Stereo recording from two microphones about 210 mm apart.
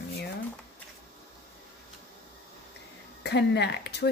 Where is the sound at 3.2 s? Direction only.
50° left (ahead or behind).